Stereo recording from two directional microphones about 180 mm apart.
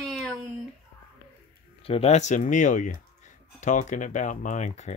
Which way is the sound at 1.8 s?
35° left (ahead or behind).